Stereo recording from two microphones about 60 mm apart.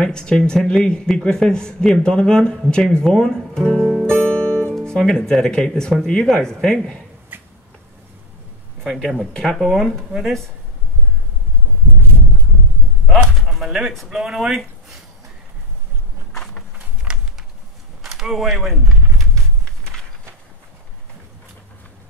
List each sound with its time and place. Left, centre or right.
0.0 s a man's voice: centre
4.0 s music: centre
4.8 s a man's voice: centre
7.3 s a sound: right
8.8 s a man's voice: centre
10.1 s speech: centre
13.1 s speech: centre
16.7 s a sound: right
18.0 s speech: centre